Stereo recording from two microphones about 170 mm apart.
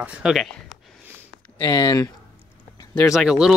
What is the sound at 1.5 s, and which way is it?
Speech, 25° left (ahead or behind).